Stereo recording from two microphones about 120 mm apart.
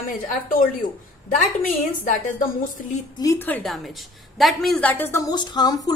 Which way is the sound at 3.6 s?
Centre (ahead or behind).